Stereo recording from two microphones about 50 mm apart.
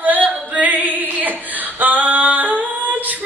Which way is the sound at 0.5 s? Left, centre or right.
Right.